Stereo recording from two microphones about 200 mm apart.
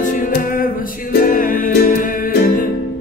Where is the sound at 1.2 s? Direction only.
40° left (ahead or behind).